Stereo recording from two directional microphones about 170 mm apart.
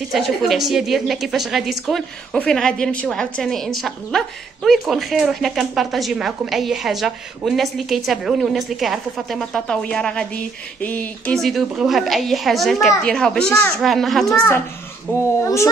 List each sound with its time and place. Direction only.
0.1 s speech: centre (ahead or behind)
15.1 s a child's voice: 15° left (ahead or behind)